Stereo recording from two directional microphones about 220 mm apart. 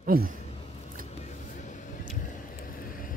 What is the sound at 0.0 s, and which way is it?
Speech, 40° right (ahead or behind).